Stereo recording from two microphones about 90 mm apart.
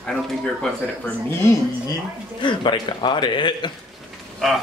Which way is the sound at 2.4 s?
60° left (ahead or behind).